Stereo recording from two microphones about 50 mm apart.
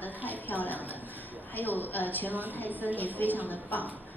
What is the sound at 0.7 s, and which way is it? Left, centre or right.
A woman's voice, left.